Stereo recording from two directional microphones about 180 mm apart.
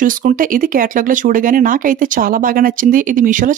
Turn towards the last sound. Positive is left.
turn(degrees=-45)  # may be behind; listen again after turning